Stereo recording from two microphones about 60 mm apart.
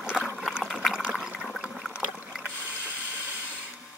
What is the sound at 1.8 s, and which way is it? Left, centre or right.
Boat, centre.